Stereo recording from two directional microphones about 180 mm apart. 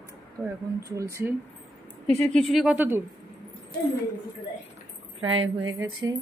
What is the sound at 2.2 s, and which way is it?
Speech, 5° left (ahead or behind).